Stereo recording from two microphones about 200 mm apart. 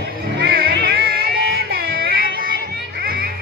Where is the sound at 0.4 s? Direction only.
50° right (ahead or behind).